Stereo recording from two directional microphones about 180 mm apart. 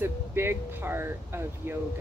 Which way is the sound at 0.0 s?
15° right (ahead or behind).